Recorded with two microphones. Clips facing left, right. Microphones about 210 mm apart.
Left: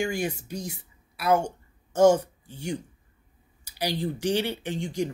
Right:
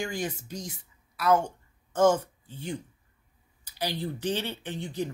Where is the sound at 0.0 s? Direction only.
10° left (ahead or behind).